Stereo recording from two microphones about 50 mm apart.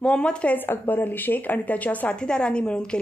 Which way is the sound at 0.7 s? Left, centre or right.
Left.